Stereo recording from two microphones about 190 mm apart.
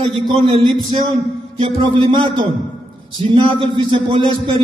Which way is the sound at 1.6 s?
25° right (ahead or behind).